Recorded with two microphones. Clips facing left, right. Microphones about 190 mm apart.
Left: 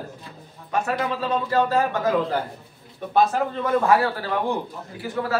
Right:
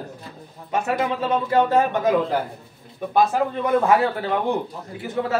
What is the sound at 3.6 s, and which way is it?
A man's voice, 20° right (ahead or behind).